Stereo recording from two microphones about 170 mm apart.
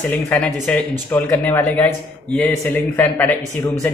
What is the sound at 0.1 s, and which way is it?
A man's voice, 10° left (ahead or behind).